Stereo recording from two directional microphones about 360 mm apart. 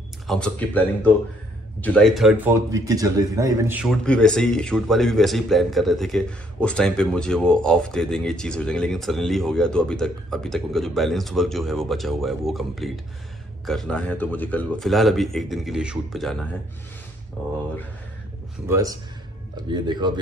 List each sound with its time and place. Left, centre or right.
0.3 s a man's voice: centre
18.7 s speech: centre